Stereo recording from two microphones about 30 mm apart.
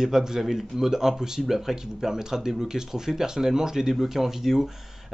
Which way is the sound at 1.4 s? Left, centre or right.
Centre.